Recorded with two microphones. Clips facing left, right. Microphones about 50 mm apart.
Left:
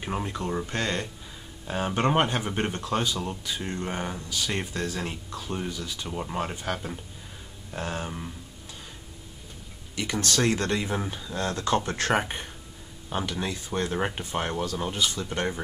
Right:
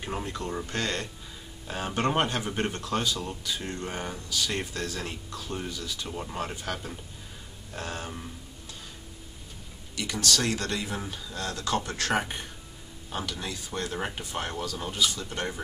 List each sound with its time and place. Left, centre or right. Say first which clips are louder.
0.0 s speech: left 3 dB; centre
9.9 s speech: left 2 dB; left
11.4 s speech: left 4 dB; left